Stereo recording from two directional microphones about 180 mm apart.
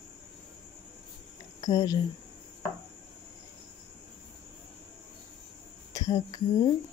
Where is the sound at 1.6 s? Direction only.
20° left (ahead or behind).